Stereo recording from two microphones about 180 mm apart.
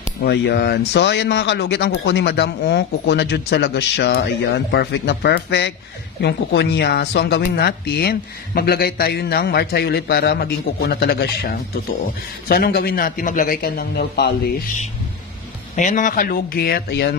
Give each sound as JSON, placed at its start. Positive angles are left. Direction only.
{"t": 0.2, "sound": "speech", "side_deg": 65}
{"t": 15.7, "sound": "speech", "side_deg": 45}